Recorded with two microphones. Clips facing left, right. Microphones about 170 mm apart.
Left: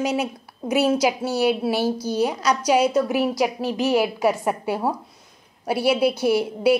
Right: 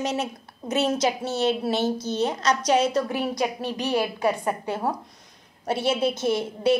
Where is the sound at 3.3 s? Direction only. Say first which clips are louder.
Left 4 dB; 90° left.